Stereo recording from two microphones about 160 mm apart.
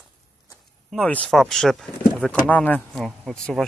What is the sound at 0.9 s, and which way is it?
Speech, 10° left (ahead or behind).